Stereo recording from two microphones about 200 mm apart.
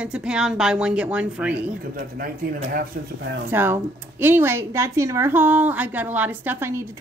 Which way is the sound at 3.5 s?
10° right (ahead or behind).